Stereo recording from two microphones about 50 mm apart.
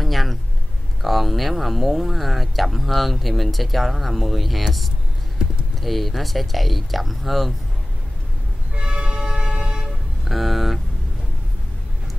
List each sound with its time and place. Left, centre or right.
0.0 s a sound: centre
1.0 s speech: centre
5.4 s computer keyboard: centre
5.8 s speech: centre
8.7 s vehicle: centre
10.2 s music: centre